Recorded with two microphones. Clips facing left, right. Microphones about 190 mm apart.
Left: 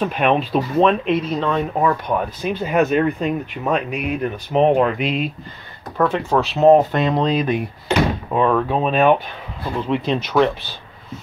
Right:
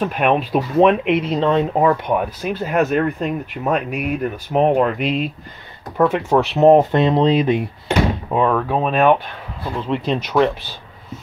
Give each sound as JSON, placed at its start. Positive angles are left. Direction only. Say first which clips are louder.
{"t": 0.0, "sound": "speech", "louder": "even", "side_deg": -5}
{"t": 1.1, "sound": "speech", "louder": "right 3 dB", "side_deg": -25}
{"t": 2.1, "sound": "speech", "louder": "right 1 dB", "side_deg": -5}
{"t": 5.9, "sound": "speech", "louder": "right 2 dB", "side_deg": -20}
{"t": 8.3, "sound": "speech", "louder": "even", "side_deg": -10}